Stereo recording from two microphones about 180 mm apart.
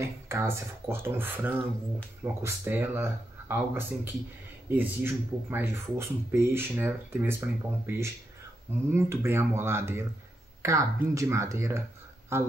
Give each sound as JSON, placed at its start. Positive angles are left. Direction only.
{"t": 0.0, "sound": "speech", "side_deg": -15}